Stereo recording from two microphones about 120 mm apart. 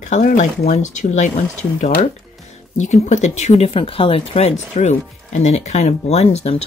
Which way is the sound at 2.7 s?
75° left (ahead or behind).